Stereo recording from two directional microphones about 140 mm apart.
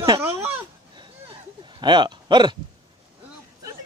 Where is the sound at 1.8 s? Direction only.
35° right (ahead or behind).